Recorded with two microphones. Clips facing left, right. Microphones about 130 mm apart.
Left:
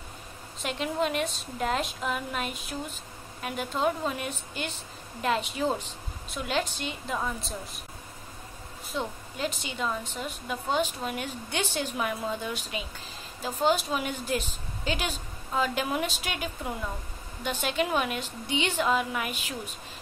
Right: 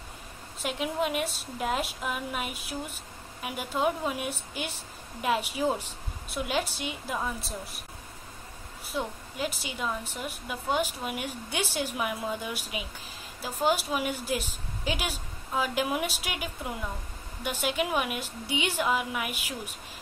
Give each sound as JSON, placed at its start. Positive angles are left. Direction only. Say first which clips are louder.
{"t": 0.6, "sound": "a woman's voice", "louder": "left 1 dB", "side_deg": -5}
{"t": 8.9, "sound": "a woman's voice", "louder": "even", "side_deg": -10}